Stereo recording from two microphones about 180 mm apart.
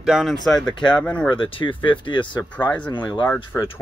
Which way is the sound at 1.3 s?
30° left (ahead or behind).